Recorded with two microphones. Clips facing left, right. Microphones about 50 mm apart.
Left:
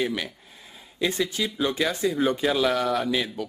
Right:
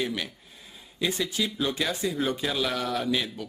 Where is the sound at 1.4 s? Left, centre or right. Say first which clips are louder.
Left 2 dB; centre.